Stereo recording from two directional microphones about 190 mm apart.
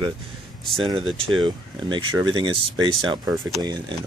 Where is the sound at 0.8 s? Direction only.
25° right (ahead or behind).